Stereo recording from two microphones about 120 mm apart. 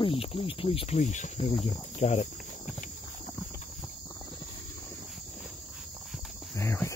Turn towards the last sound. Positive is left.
turn(degrees=25)  # may be behind; listen again after turning